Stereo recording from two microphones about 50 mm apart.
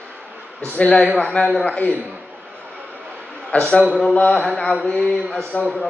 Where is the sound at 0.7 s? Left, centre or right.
Left.